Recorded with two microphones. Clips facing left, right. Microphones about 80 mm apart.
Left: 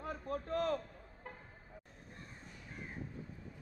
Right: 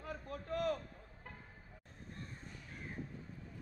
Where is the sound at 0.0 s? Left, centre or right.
Left.